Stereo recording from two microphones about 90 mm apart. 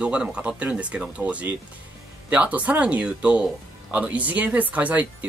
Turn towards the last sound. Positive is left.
turn(degrees=-15)  # may be behind; listen again after turning